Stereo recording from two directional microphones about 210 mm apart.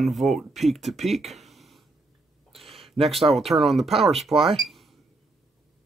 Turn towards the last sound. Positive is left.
turn(degrees=0)  # may be behind; listen again after turning